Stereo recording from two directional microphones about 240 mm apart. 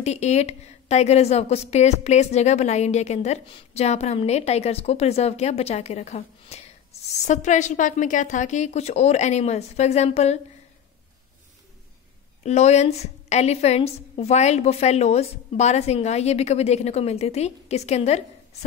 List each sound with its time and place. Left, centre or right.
0.0 s a woman's voice: left
12.4 s a woman's voice: left